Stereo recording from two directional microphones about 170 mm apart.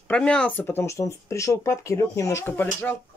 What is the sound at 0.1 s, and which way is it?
Speech, 5° left (ahead or behind).